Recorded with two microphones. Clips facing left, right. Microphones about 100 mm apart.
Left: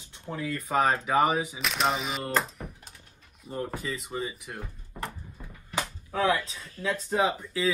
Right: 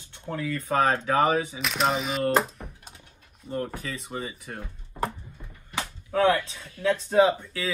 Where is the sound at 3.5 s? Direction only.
10° left (ahead or behind).